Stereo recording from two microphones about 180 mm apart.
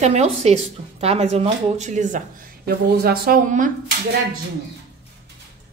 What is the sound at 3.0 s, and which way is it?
Speech, 55° right (ahead or behind).